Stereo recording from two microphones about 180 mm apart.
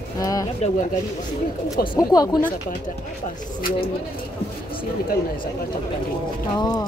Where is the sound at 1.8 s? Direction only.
25° left (ahead or behind).